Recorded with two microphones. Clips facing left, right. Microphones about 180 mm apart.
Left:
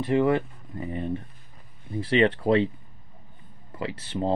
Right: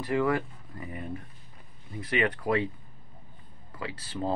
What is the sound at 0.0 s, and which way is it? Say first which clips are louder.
Speech: left 5 dB; 25° left (ahead or behind).